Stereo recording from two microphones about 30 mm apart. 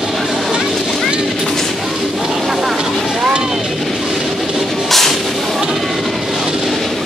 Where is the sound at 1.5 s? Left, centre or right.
Centre.